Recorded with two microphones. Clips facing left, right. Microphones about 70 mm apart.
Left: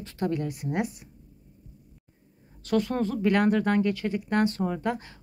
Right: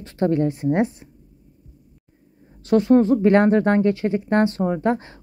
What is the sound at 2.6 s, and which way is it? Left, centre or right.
Speech, right.